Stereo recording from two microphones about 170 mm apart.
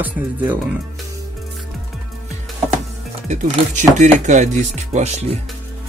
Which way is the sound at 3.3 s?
45° right (ahead or behind).